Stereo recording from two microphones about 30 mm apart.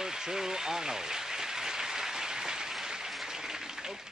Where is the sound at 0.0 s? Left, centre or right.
Centre.